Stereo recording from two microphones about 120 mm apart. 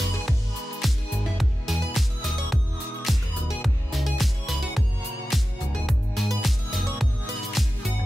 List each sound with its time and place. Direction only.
0.8 s music: centre (ahead or behind)